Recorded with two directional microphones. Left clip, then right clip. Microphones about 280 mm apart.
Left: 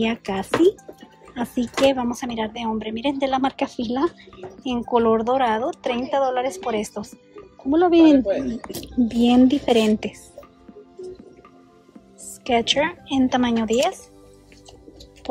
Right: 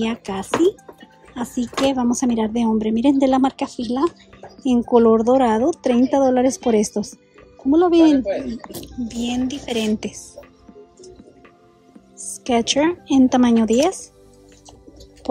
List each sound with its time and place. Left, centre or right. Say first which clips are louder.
0.0 s a woman's voice: left 1 dB; centre
7.7 s speech: right 1 dB; centre
12.2 s speech: right 1 dB; centre